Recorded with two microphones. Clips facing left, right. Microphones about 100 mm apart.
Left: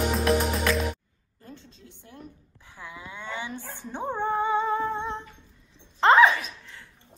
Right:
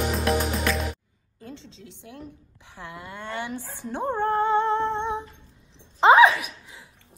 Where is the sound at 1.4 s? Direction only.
90° right.